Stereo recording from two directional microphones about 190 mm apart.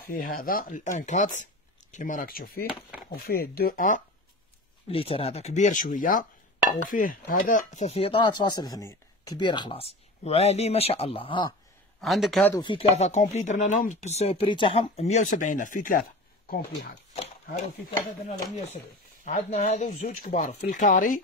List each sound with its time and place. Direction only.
0.1 s speech: 50° left (ahead or behind)
2.7 s a sound: 5° right (ahead or behind)
3.2 s speech: 50° left (ahead or behind)
4.8 s speech: 30° left (ahead or behind)
12.0 s speech: centre (ahead or behind)
12.5 s speech: 25° left (ahead or behind); by 16.0 s 45° left (ahead or behind)
16.4 s speech: 60° left (ahead or behind)
17.1 s a sound: 35° left (ahead or behind)
19.2 s speech: 40° left (ahead or behind)